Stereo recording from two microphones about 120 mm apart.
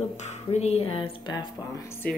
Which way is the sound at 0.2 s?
70° left (ahead or behind).